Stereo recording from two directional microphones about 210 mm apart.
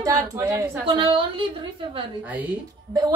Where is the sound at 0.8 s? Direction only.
25° right (ahead or behind).